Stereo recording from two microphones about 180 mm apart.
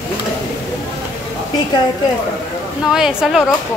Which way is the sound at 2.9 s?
5° right (ahead or behind).